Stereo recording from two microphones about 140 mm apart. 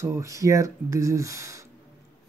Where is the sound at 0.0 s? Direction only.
20° right (ahead or behind).